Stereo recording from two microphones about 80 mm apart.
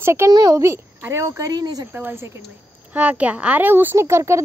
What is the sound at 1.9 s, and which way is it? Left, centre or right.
Speech, right.